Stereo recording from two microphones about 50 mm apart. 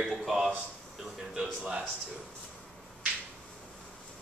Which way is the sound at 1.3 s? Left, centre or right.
Centre.